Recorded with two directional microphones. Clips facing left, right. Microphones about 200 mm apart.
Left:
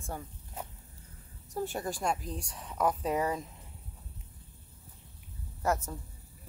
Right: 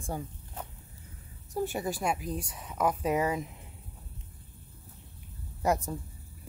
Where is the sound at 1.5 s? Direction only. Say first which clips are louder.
Right 3 dB; 10° right (ahead or behind).